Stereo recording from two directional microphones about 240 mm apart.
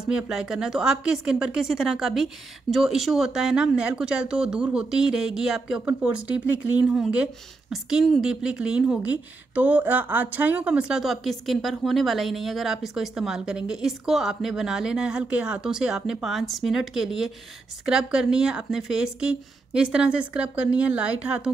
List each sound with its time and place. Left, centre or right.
0.0 s a woman's voice: centre